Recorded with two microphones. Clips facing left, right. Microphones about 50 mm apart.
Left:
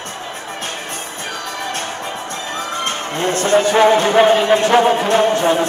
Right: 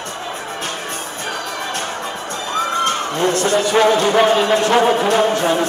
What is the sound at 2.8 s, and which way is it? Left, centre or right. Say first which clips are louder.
Speech: right 3 dB; left.